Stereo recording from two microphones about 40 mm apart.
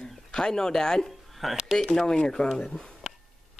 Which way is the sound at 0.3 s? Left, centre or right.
Centre.